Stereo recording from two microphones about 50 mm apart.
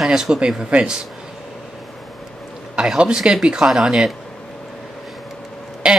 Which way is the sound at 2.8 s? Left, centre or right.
Centre.